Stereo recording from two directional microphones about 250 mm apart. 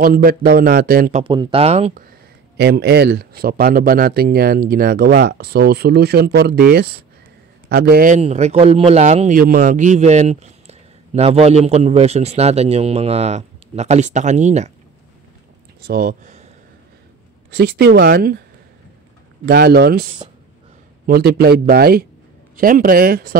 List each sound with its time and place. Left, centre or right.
0.0 s speech: right
1.2 s a man's voice: centre
2.5 s speech: right
7.7 s a man's voice: right
15.8 s speech: right
17.6 s speech: right
19.4 s speech: right